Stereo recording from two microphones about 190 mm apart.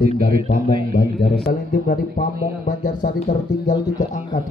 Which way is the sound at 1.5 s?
45° left (ahead or behind).